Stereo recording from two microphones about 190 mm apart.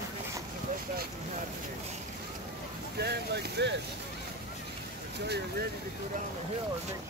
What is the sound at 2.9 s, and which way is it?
Speech, 60° right (ahead or behind).